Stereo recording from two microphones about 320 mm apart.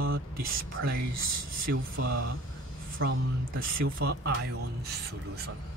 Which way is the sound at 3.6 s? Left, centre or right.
Right.